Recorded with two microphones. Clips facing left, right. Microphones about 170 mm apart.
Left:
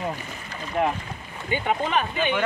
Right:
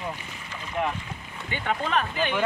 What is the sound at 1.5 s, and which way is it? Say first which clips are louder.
Speech: left 4 dB; 15° left (ahead or behind).